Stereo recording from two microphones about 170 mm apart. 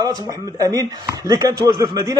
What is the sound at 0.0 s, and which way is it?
A man's voice, 20° right (ahead or behind).